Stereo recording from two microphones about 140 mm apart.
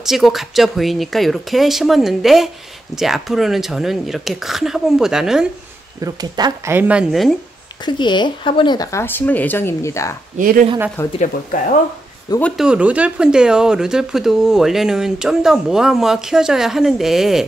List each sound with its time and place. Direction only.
0.0 s speech: centre (ahead or behind)
5.9 s speech: 25° right (ahead or behind)
6.7 s speech: 10° right (ahead or behind)
7.8 s speech: 35° left (ahead or behind)
8.9 s speech: 15° left (ahead or behind)
10.3 s speech: 70° right (ahead or behind)
11.0 s speech: 15° left (ahead or behind)
12.5 s speech: 5° right (ahead or behind)